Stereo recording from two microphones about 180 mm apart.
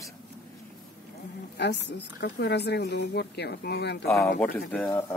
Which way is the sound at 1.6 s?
70° left (ahead or behind).